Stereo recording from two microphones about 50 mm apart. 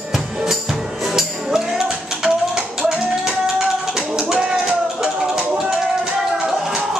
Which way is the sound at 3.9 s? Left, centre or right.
Centre.